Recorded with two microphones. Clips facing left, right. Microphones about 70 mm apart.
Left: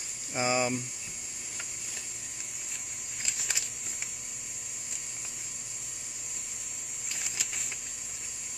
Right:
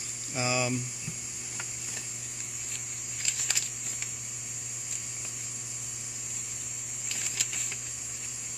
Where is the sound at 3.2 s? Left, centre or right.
Centre.